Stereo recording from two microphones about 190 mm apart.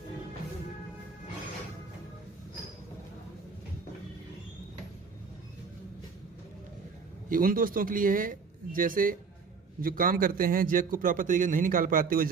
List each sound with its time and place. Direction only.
7.2 s a man's voice: 45° right (ahead or behind)